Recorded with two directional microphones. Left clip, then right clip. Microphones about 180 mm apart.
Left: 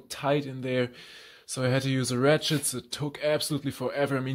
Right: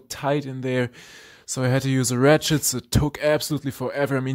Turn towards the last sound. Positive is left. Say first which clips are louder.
# right 4 dB
turn(degrees=-30)  # may be behind; listen again after turning